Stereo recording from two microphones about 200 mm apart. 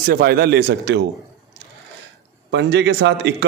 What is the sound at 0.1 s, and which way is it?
Speech, 50° right (ahead or behind).